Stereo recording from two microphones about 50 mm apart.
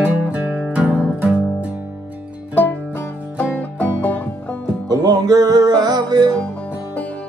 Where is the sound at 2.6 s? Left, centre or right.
Left.